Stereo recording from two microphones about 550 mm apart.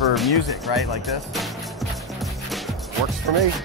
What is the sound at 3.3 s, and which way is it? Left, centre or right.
Speech, right.